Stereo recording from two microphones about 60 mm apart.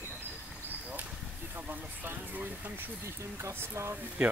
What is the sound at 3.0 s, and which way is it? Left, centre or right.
Speech, right.